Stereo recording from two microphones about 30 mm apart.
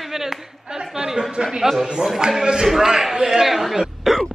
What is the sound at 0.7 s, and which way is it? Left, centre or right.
A man's voice, right.